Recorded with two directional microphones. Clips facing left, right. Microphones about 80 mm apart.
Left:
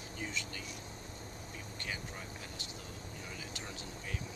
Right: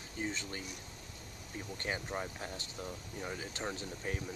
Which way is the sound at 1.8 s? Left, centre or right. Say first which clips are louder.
Right 7 dB; right.